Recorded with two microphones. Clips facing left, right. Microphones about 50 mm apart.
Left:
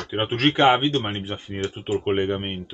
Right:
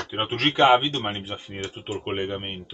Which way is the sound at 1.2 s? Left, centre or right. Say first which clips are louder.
Left 4 dB; centre.